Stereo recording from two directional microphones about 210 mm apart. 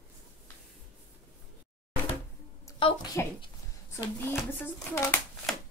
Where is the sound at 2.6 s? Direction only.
15° left (ahead or behind).